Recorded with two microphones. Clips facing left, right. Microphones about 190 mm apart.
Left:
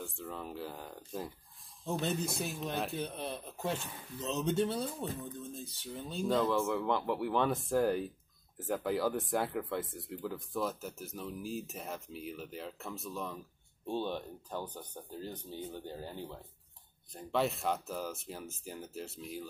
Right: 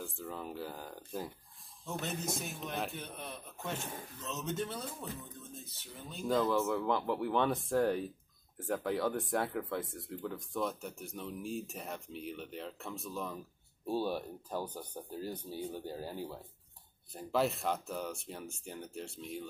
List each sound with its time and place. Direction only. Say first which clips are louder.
0.0 s speech: even; centre (ahead or behind)
2.0 s speech: left 3 dB; 35° left (ahead or behind)
6.2 s speech: even; centre (ahead or behind)